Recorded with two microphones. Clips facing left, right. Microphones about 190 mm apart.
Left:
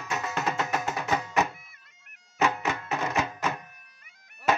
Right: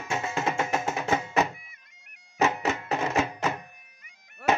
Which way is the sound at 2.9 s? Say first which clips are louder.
Right 2 dB; 25° right (ahead or behind).